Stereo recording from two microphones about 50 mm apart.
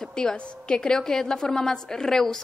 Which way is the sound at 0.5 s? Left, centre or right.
Centre.